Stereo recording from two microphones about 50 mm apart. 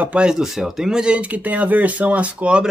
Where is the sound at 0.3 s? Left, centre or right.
Centre; by 2.6 s right.